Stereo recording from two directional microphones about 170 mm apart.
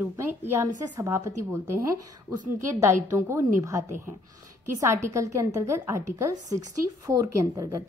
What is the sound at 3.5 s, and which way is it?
Speech, 20° right (ahead or behind).